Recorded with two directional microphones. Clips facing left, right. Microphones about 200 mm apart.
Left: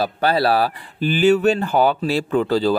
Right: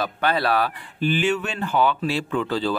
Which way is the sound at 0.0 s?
35° left (ahead or behind).